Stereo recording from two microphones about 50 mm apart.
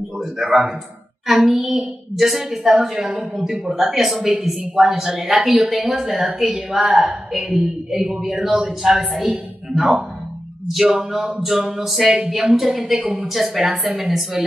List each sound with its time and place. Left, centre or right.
0.4 s a woman's voice: centre
1.2 s child singing: centre
1.6 s a woman's voice: centre
3.3 s a woman's voice: centre
3.6 s a woman's voice: centre
7.9 s a woman's voice: centre
10.8 s a woman's voice: centre